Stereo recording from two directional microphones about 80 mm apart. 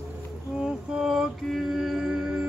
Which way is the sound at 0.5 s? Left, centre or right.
Centre.